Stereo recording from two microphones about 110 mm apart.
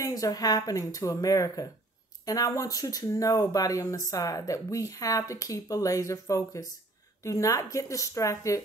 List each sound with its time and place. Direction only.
0.0 s speech: 35° left (ahead or behind)